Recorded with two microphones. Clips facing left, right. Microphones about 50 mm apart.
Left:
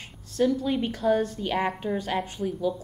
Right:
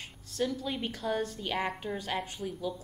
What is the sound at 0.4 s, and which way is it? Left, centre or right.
A woman's voice, centre.